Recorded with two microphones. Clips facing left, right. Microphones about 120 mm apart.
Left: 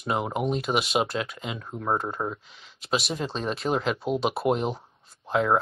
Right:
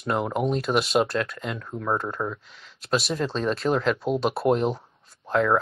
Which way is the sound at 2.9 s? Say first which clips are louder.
Right 3 dB; centre (ahead or behind).